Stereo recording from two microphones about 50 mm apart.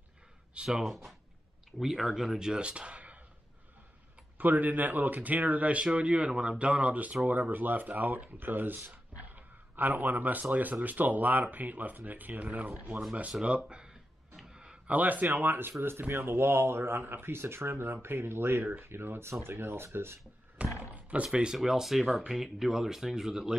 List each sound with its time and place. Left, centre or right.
0.7 s speech: centre; by 3.2 s right
4.4 s speech: right
8.9 s a sound: right
10.5 s speech: right
13.4 s speech: centre
14.4 s a sound: centre
14.9 s speech: right
20.6 s roaring cats: right
20.9 s a sound: right
21.5 s speech: centre